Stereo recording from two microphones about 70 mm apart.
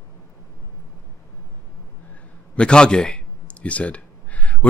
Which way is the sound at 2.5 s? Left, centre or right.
Centre.